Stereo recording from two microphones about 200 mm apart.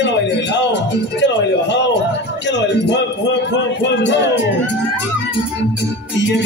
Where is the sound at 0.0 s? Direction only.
60° left (ahead or behind).